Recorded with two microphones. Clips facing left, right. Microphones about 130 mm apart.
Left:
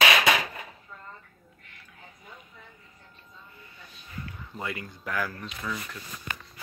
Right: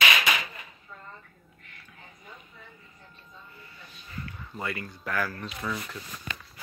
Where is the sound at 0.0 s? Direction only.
75° left (ahead or behind).